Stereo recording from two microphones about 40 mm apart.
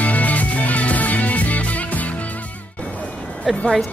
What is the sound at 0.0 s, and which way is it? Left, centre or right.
Music, left.